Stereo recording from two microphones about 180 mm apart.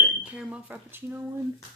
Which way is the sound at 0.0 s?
5° right (ahead or behind).